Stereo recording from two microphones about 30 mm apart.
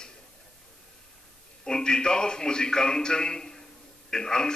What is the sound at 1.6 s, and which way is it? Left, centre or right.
A man's voice, left.